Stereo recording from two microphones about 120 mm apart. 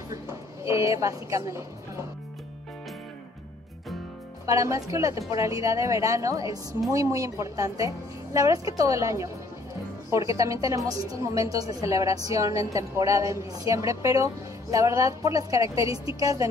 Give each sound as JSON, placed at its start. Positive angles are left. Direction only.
{"t": 0.1, "sound": "a woman's voice", "side_deg": -25}
{"t": 4.5, "sound": "a woman's voice", "side_deg": -25}